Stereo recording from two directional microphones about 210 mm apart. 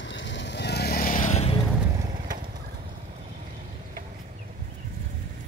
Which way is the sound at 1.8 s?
15° right (ahead or behind).